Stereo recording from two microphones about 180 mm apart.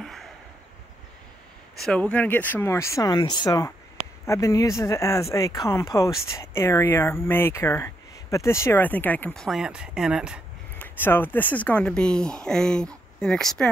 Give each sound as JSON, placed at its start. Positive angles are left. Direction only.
{"t": 0.0, "sound": "a sound", "side_deg": 0}
{"t": 1.8, "sound": "speech", "side_deg": 5}
{"t": 10.8, "sound": "speech", "side_deg": 10}